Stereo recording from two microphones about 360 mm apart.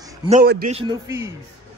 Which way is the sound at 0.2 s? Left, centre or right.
Right.